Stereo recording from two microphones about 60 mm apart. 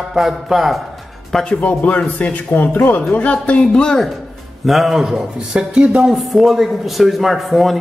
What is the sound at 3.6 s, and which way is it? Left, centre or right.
Speech, centre.